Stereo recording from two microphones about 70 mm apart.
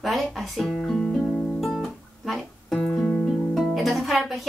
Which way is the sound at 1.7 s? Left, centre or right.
Centre.